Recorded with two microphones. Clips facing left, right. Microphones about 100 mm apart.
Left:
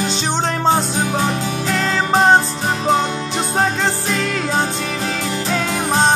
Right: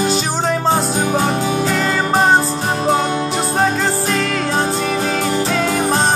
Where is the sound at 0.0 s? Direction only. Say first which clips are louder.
Right 2 dB; 5° right (ahead or behind).